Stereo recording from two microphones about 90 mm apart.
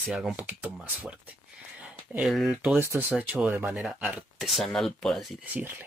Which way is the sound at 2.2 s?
5° right (ahead or behind).